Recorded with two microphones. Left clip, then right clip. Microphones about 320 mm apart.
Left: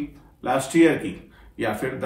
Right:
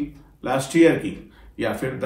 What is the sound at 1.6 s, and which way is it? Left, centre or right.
Speech, centre.